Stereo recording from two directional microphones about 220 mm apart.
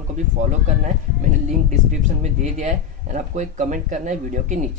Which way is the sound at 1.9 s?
35° right (ahead or behind).